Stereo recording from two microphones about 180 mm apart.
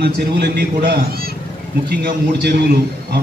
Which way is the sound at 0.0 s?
65° right (ahead or behind).